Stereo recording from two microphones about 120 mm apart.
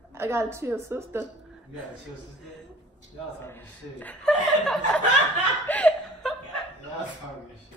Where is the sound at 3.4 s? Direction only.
15° left (ahead or behind).